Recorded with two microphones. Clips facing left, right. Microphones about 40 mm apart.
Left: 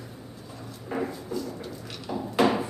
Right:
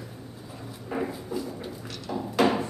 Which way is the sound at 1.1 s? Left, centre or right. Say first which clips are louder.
Even; centre.